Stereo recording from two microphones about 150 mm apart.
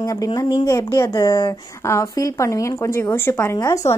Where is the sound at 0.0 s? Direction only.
25° left (ahead or behind).